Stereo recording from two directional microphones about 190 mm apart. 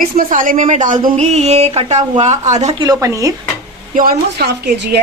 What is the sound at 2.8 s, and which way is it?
Speech, 15° right (ahead or behind).